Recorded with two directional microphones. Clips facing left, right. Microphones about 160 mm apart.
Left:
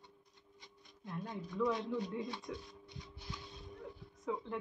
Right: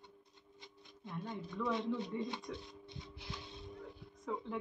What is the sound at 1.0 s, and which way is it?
A woman's voice, centre (ahead or behind).